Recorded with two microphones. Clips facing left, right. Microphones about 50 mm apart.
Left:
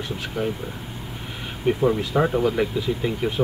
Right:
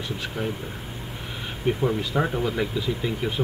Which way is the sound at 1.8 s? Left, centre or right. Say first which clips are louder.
Left 5 dB; centre.